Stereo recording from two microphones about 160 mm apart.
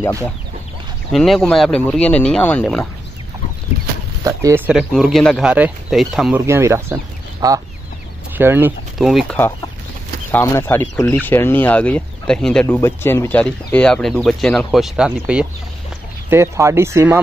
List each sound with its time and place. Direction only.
0.0 s speech: 15° left (ahead or behind)
1.1 s speech: centre (ahead or behind)
4.2 s speech: 20° right (ahead or behind)
4.6 s speech: 5° right (ahead or behind)
6.4 s speech: 15° right (ahead or behind)
8.9 s speech: centre (ahead or behind)
10.3 s speech: 15° left (ahead or behind); by 15.4 s 5° right (ahead or behind)
16.3 s speech: 15° right (ahead or behind)